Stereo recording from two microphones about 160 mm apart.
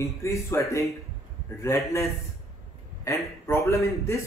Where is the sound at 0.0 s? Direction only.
20° left (ahead or behind).